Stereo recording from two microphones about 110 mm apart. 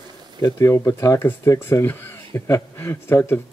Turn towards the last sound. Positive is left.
turn(degrees=20)  # may be behind; listen again after turning